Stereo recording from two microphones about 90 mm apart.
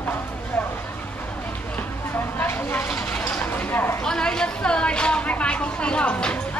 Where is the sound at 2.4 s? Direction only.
25° left (ahead or behind).